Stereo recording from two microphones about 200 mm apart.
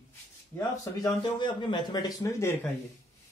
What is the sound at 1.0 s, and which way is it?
Speech, 25° left (ahead or behind).